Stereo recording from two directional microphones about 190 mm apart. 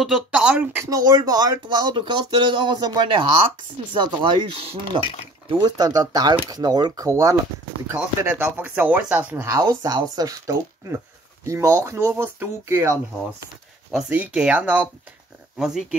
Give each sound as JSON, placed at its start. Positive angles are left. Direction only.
{"t": 0.0, "sound": "speech", "side_deg": -5}